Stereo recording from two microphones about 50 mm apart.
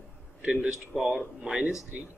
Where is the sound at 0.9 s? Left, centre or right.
Centre.